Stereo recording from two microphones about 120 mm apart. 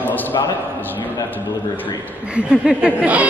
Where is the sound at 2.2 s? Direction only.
10° right (ahead or behind).